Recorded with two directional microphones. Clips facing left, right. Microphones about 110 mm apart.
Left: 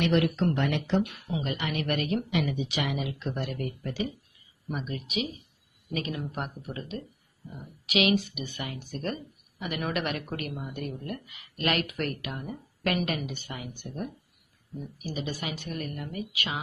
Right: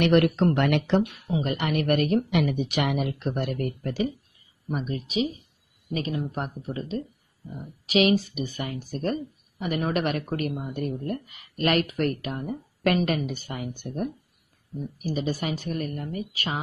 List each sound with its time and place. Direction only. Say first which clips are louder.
0.0 s speech: right 5 dB; 55° right (ahead or behind)
0.6 s speech: right 5 dB; 70° right (ahead or behind)
1.4 s speech: right 6 dB; 50° right (ahead or behind)
4.7 s speech: right 5 dB; 35° right (ahead or behind)